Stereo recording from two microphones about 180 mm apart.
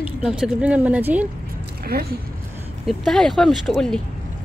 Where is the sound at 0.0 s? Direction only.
5° right (ahead or behind).